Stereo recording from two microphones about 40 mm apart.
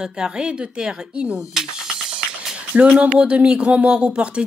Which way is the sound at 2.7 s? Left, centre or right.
Right.